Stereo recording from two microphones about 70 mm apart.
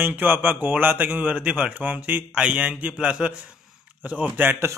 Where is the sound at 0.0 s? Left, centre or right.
Right.